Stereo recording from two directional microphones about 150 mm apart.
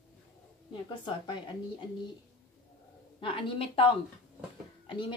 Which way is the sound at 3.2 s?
35° left (ahead or behind).